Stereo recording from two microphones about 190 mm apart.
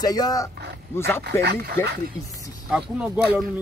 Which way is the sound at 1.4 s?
60° right (ahead or behind).